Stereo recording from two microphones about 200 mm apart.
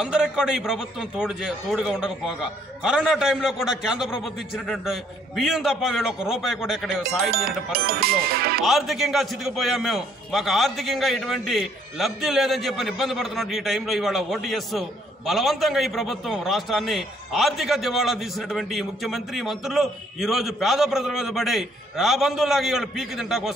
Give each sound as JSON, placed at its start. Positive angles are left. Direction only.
{"t": 0.0, "sound": "a man's voice", "side_deg": -5}
{"t": 7.2, "sound": "speech", "side_deg": -50}
{"t": 8.6, "sound": "a man's voice", "side_deg": 0}